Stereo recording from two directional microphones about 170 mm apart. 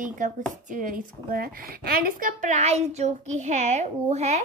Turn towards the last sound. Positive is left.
turn(degrees=-40)  # may be behind; listen again after turning